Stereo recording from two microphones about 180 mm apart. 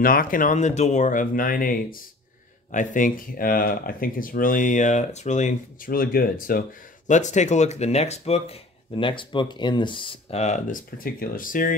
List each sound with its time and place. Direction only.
0.0 s speech: 55° left (ahead or behind)
7.1 s speech: 40° left (ahead or behind)